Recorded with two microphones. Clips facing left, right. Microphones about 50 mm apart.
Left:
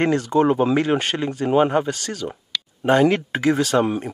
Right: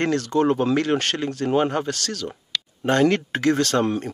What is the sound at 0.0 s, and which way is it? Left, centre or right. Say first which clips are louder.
Speech: left 3 dB; centre.